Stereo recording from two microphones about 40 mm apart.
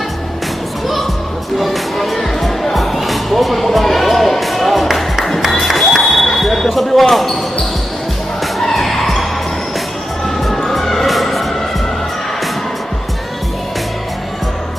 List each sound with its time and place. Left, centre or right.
1.6 s music: centre
5.5 s a sound: centre
8.5 s skidding: centre
10.2 s music: centre